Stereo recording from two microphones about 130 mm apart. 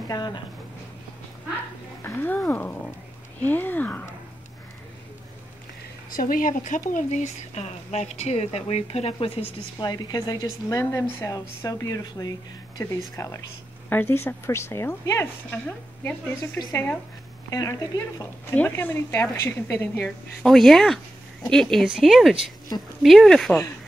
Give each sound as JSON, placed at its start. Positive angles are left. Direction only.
{"t": 0.1, "sound": "speech", "side_deg": 35}
{"t": 2.0, "sound": "a woman's voice", "side_deg": 15}
{"t": 6.1, "sound": "speech", "side_deg": 90}
{"t": 6.9, "sound": "speech", "side_deg": 70}
{"t": 13.8, "sound": "a woman's voice", "side_deg": 15}
{"t": 17.5, "sound": "a woman's voice", "side_deg": 25}
{"t": 18.5, "sound": "a woman's voice", "side_deg": 15}
{"t": 20.4, "sound": "speech", "side_deg": 0}
{"t": 22.7, "sound": "speech", "side_deg": 30}
{"t": 23.0, "sound": "speech", "side_deg": 0}